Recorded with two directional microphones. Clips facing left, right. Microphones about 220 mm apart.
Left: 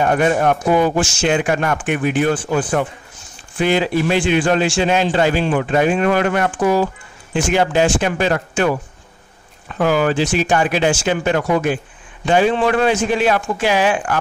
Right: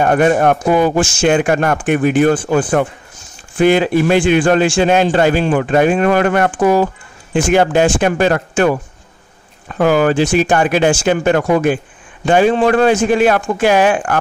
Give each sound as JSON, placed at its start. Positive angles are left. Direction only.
{"t": 0.0, "sound": "a man's voice", "side_deg": -50}